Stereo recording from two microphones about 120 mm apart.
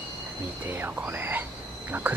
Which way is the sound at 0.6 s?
15° right (ahead or behind).